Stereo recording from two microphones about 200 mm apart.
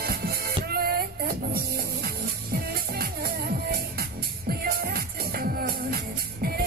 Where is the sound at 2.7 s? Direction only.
50° right (ahead or behind).